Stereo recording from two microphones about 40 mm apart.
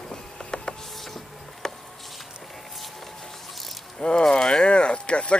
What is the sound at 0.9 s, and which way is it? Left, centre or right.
Printer, centre.